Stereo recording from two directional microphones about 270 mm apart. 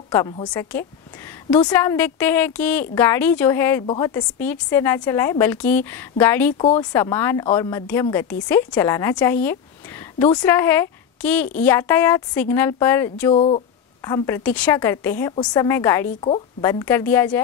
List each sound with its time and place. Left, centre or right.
0.1 s a woman's voice: centre
13.3 s a woman's voice: left